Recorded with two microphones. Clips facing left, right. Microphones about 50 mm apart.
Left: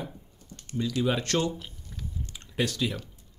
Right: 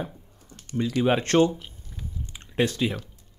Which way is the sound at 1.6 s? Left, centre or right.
Centre.